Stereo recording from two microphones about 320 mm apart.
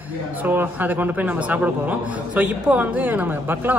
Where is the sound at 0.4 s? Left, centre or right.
Centre.